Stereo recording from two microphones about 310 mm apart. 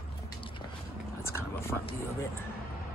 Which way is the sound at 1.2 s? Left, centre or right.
Centre.